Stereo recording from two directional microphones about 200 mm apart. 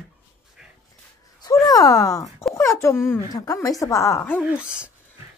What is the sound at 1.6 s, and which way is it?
Speech, 20° left (ahead or behind).